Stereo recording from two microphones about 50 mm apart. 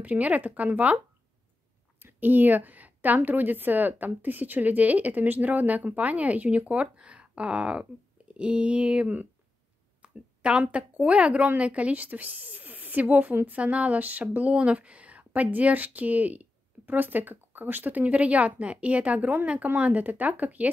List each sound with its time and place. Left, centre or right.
0.0 s speech: right
2.0 s speech: right
10.0 s a sound: right
10.7 s speech: right